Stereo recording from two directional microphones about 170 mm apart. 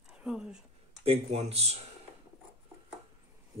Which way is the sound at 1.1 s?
35° right (ahead or behind).